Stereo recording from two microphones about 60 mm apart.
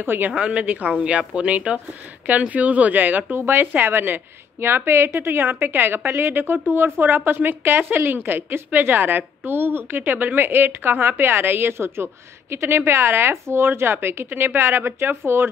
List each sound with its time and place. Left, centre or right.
0.0 s a woman's voice: right
0.4 s a woman's voice: centre; by 15.5 s right